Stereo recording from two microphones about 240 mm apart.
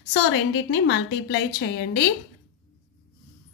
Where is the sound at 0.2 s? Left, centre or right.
Left.